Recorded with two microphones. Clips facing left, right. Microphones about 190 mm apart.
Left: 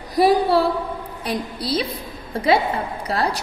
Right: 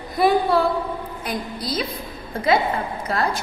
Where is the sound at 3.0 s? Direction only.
35° left (ahead or behind).